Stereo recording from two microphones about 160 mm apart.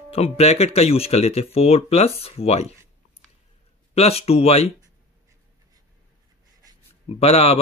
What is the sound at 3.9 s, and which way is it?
Speech, 40° left (ahead or behind).